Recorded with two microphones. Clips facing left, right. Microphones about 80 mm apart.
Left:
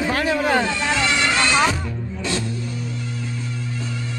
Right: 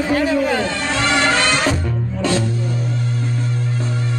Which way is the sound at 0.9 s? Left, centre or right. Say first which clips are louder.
Right 5 dB; right.